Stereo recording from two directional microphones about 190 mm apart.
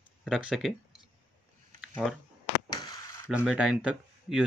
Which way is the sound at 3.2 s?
5° right (ahead or behind).